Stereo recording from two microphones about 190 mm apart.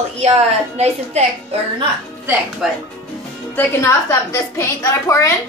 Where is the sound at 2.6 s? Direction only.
Centre (ahead or behind).